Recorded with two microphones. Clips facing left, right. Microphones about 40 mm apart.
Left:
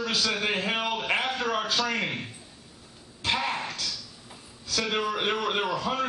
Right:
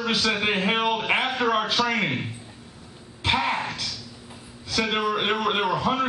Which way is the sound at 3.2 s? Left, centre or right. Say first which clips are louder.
Right 4 dB; centre.